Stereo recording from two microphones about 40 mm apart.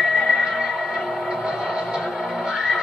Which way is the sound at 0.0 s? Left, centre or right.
Centre.